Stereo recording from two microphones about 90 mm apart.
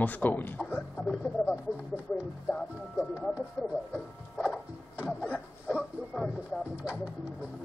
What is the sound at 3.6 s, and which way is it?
Speech, 10° left (ahead or behind).